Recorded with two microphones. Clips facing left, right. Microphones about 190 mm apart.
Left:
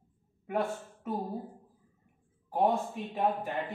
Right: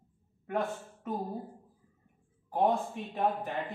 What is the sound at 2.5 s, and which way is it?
Speech, 5° left (ahead or behind).